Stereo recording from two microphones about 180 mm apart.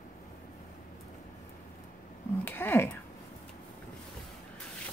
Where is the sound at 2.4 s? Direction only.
10° left (ahead or behind).